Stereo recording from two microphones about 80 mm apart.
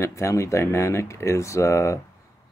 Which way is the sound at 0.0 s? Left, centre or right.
Left.